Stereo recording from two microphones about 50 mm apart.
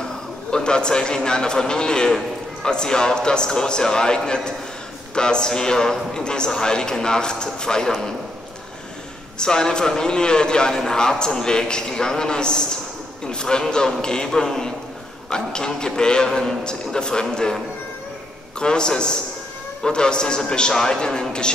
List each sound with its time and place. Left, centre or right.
0.5 s a man's voice: centre
9.4 s a man's voice: centre
18.6 s a man's voice: centre